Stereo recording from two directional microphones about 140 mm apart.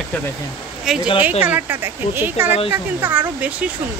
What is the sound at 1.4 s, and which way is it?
Speech, 15° right (ahead or behind).